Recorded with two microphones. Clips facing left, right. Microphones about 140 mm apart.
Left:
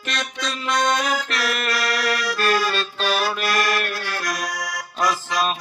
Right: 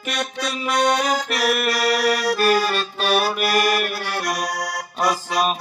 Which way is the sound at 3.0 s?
60° right (ahead or behind).